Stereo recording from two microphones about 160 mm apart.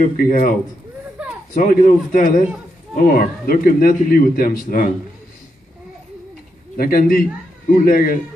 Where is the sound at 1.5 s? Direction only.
55° left (ahead or behind).